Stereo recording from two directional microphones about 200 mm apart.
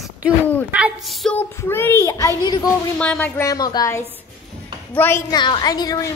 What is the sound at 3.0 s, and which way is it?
A woman's voice, 10° left (ahead or behind).